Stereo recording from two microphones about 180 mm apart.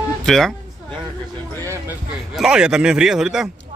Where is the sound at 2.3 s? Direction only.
5° right (ahead or behind).